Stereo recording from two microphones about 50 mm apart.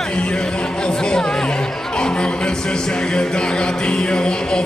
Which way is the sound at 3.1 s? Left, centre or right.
Centre.